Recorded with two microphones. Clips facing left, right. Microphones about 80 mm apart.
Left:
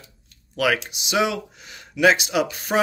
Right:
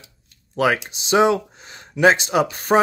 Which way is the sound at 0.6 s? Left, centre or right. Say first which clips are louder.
Right 3 dB; right.